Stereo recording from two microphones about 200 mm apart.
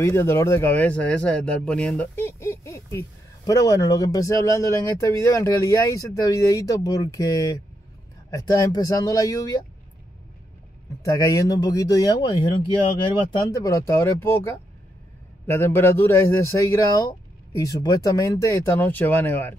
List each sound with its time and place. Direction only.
0.0 s speech: 15° left (ahead or behind)
11.1 s speech: 15° left (ahead or behind)